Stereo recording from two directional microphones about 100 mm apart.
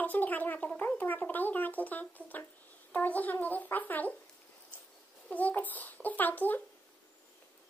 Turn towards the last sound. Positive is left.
turn(degrees=15)  # may be behind; listen again after turning